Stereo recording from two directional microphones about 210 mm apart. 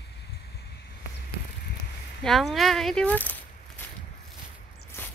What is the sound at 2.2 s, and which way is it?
Speech, centre (ahead or behind).